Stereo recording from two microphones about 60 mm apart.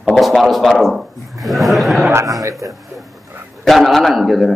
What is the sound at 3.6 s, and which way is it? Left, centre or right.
Speech, centre.